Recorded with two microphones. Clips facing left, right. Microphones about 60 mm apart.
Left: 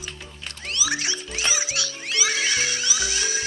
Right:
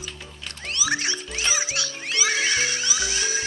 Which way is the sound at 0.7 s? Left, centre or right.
Right.